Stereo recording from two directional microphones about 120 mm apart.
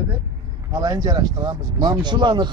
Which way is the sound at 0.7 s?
35° right (ahead or behind).